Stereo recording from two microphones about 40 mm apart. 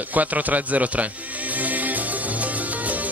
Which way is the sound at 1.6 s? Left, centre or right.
Right.